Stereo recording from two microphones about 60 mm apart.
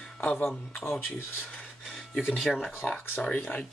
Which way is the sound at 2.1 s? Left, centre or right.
Centre.